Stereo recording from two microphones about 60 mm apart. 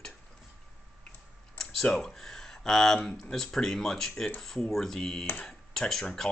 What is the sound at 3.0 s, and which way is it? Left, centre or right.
Speech, centre.